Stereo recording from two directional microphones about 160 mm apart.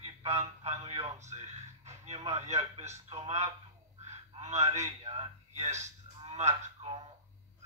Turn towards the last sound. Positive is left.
turn(degrees=-40)  # may be behind; listen again after turning